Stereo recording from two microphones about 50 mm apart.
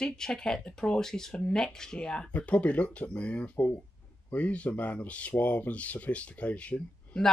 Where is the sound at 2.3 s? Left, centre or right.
Left.